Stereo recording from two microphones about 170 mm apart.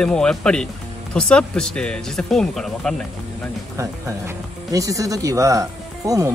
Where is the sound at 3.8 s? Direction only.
20° right (ahead or behind).